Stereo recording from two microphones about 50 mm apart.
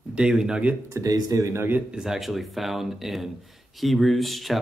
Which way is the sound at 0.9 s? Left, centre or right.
Right.